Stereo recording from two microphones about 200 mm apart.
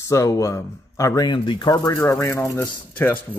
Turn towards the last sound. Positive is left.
turn(degrees=10)  # may be behind; listen again after turning